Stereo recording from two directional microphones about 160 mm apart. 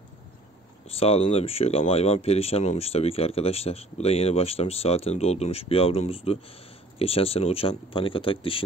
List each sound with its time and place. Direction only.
0.9 s speech: 40° left (ahead or behind)